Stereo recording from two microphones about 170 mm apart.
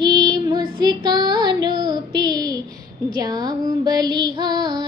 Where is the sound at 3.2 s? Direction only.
25° right (ahead or behind).